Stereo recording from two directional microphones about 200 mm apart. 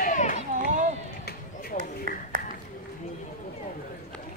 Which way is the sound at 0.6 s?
40° right (ahead or behind).